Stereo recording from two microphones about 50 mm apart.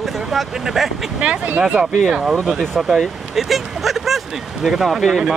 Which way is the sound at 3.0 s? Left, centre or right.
Centre.